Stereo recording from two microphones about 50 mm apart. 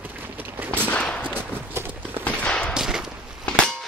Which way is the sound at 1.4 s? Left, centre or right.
Right.